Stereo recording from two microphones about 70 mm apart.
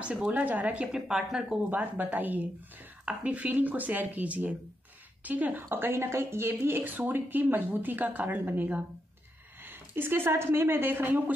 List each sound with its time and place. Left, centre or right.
0.0 s speech: centre
1.7 s a woman's voice: centre